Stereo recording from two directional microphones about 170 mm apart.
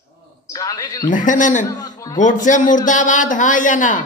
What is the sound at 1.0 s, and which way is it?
Speech, 50° left (ahead or behind).